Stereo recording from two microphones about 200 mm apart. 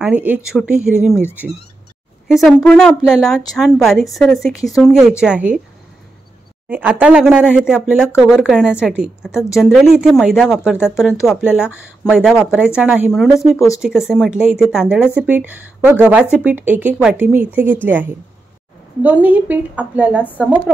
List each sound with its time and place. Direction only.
0.0 s a woman's voice: 10° right (ahead or behind)
2.2 s a woman's voice: centre (ahead or behind)
4.6 s a woman's voice: 15° left (ahead or behind)
4.8 s a woman's voice: centre (ahead or behind)
6.7 s a woman's voice: 10° right (ahead or behind)